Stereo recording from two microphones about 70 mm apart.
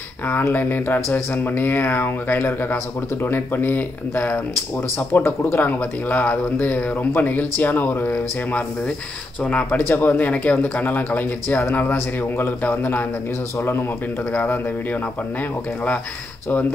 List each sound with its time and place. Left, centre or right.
0.3 s speech: left
9.7 s speech: left
13.6 s speech: left